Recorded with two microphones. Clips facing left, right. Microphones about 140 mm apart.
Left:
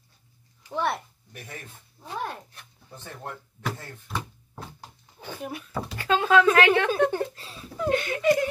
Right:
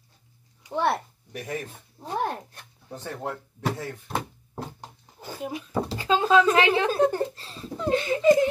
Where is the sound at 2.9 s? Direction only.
80° right.